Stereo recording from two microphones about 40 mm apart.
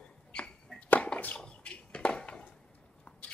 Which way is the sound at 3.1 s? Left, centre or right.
Left.